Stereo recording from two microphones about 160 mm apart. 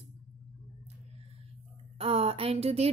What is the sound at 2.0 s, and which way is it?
Speech, 40° right (ahead or behind).